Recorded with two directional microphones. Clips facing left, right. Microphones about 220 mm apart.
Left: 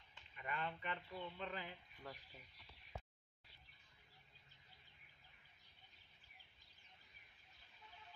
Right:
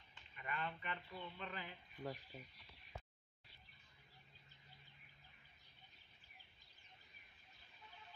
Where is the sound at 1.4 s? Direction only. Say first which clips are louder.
Left 2 dB; 25° left (ahead or behind).